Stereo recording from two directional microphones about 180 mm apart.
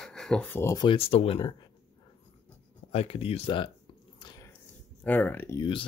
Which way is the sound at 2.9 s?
35° left (ahead or behind).